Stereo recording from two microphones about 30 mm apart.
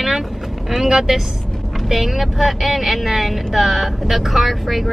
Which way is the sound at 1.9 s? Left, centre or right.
Centre.